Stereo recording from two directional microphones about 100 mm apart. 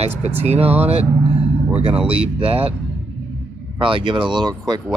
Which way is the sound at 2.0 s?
75° right (ahead or behind).